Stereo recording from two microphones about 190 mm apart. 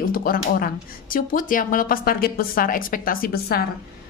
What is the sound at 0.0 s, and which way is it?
Speech, 50° left (ahead or behind).